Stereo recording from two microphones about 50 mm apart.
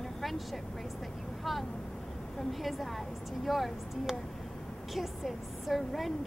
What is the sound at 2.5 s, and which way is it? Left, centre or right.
A woman's voice, centre.